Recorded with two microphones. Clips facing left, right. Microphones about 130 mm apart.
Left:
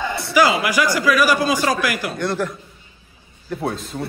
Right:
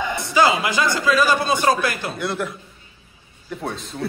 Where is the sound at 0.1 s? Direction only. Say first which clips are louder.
Left 1 dB; 20° right (ahead or behind).